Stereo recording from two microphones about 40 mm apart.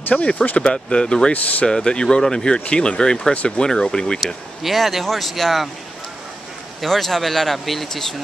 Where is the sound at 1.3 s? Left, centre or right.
Left.